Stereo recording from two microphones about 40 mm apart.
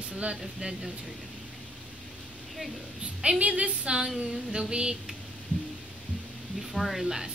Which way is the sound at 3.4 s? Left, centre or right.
Right.